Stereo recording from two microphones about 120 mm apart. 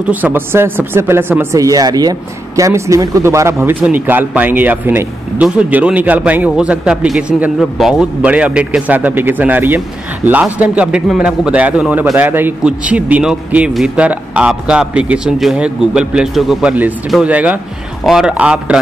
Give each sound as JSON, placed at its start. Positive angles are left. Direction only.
{"t": 0.1, "sound": "speech", "side_deg": -15}